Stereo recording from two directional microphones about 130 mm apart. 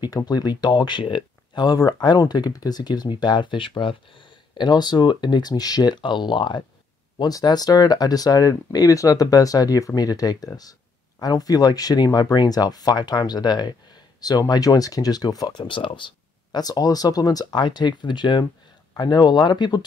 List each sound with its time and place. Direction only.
0.0 s speech: 35° left (ahead or behind)